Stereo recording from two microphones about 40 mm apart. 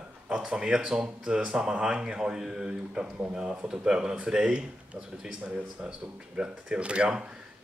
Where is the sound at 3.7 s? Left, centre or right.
Centre.